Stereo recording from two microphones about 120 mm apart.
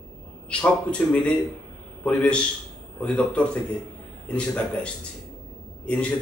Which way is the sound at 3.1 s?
10° left (ahead or behind).